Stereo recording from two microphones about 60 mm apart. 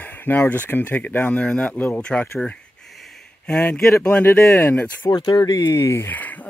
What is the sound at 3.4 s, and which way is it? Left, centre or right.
Speech, centre.